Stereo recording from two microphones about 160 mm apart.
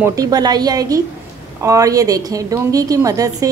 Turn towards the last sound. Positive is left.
turn(degrees=-20)  # may be behind; listen again after turning